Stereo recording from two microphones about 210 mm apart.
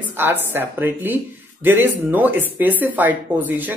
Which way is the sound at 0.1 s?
10° right (ahead or behind).